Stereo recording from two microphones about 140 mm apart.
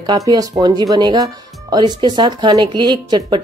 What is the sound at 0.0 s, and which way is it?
A woman's voice, 30° right (ahead or behind).